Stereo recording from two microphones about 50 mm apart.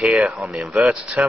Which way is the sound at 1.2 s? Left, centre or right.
Right.